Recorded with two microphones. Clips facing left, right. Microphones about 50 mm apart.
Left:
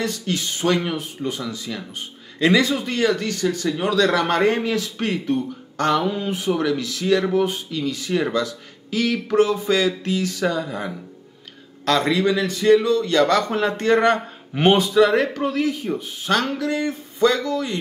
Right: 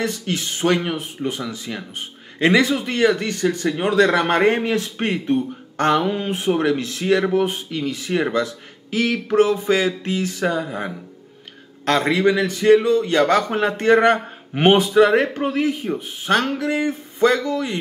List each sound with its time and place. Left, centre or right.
0.0 s a man's voice: right